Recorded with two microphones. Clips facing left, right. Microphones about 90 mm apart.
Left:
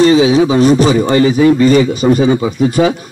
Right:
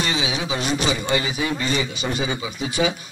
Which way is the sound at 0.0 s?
35° left (ahead or behind).